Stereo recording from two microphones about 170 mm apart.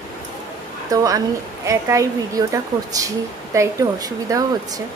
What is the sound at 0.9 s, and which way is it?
Speech, 20° right (ahead or behind).